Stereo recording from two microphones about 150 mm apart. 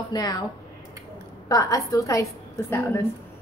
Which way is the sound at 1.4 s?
25° left (ahead or behind).